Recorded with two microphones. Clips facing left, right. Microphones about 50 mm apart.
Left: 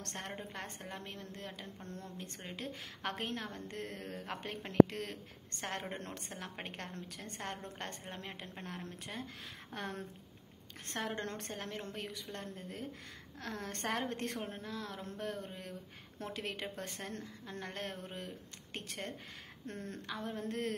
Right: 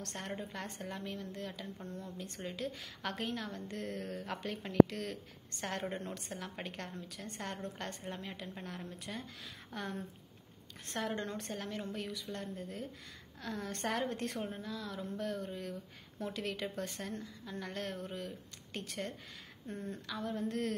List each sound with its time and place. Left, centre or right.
0.0 s a woman's voice: left
19.7 s a woman's voice: left
20.1 s a woman's voice: left